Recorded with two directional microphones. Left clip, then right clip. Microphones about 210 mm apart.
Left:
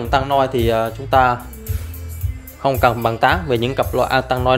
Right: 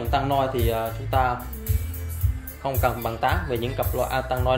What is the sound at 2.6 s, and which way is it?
Speech, 60° left (ahead or behind).